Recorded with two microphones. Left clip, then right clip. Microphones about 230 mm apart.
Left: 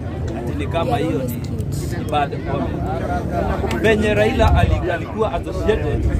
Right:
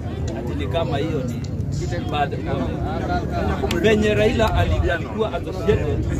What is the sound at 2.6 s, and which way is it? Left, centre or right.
Speech, right.